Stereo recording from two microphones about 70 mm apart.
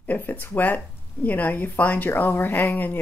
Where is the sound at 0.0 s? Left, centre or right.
Left.